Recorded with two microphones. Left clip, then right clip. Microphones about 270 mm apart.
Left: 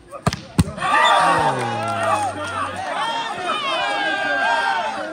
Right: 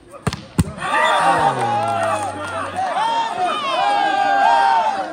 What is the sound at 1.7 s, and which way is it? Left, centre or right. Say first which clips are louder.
Music: right 4 dB; centre.